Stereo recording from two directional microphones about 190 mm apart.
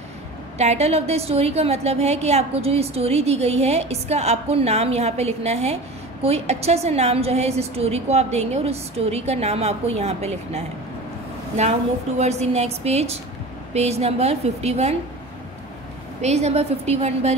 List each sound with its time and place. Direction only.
0.6 s a woman's voice: 35° right (ahead or behind)
16.2 s a woman's voice: 35° right (ahead or behind)